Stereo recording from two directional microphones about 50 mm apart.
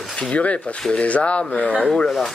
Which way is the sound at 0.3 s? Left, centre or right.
Left.